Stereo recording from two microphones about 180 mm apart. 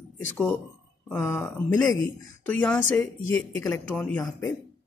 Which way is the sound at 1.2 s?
15° left (ahead or behind).